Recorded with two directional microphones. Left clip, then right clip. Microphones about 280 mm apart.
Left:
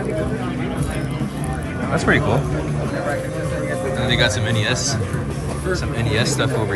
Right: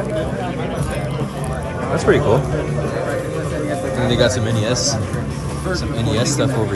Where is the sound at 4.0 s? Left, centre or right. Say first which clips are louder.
Right 2 dB; centre.